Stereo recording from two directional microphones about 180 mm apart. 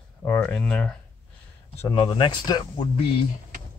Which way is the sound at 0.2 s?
5° left (ahead or behind).